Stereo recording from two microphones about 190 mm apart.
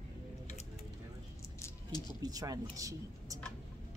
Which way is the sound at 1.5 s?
15° left (ahead or behind).